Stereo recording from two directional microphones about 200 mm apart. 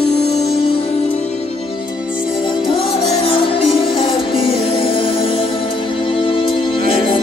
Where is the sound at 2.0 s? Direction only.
5° right (ahead or behind).